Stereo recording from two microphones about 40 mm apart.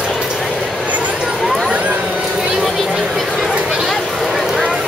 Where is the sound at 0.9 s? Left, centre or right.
Right.